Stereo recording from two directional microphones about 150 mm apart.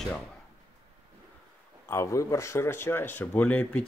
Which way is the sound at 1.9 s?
20° left (ahead or behind).